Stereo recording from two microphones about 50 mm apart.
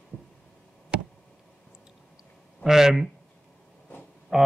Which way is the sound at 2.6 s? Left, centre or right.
Centre.